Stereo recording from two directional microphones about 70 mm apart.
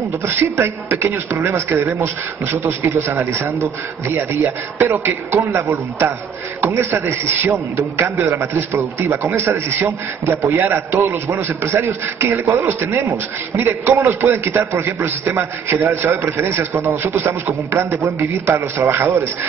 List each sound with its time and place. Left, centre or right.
0.3 s a man's voice: right